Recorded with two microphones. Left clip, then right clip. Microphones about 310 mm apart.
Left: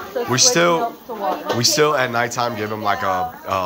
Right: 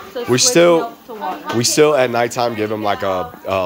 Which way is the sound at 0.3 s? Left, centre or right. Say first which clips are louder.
Right 4 dB; right.